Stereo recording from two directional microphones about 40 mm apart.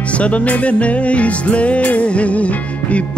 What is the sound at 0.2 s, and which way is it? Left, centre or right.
Music, left.